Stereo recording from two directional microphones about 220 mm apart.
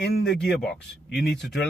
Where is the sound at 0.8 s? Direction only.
45° left (ahead or behind).